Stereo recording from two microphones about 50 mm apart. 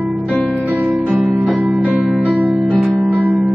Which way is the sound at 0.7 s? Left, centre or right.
Right.